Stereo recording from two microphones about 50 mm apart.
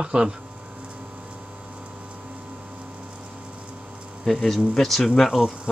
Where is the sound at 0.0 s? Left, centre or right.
Centre.